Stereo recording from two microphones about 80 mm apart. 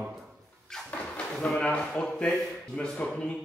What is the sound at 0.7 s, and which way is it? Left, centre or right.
Speech, centre.